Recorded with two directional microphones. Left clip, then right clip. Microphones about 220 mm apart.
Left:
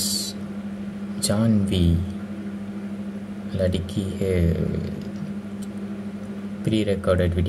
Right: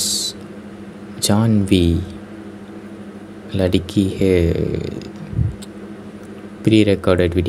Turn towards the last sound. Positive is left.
turn(degrees=-25)  # may be behind; listen again after turning